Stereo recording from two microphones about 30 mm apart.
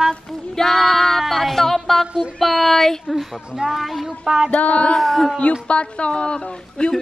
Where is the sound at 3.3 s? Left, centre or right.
Right.